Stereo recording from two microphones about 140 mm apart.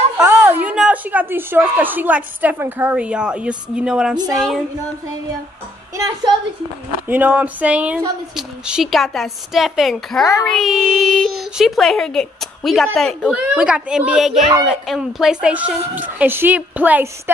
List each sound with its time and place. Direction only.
0.2 s a woman's voice: 10° right (ahead or behind)
5.9 s a woman's voice: 25° right (ahead or behind)
7.1 s a child's voice: 10° right (ahead or behind)